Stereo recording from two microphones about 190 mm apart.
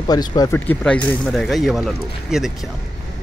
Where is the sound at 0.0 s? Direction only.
20° left (ahead or behind).